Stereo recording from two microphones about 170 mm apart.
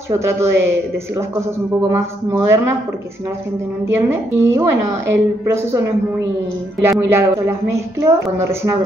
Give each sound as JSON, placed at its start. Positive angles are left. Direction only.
{"t": 0.1, "sound": "a woman's voice", "side_deg": -15}
{"t": 3.8, "sound": "a woman's voice", "side_deg": -15}
{"t": 6.8, "sound": "a woman's voice", "side_deg": -15}